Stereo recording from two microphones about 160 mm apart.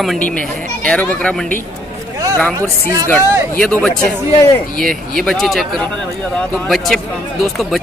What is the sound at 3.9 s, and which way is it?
Speech, 20° left (ahead or behind).